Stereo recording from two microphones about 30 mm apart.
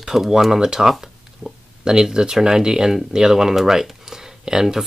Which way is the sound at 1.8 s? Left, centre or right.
Right.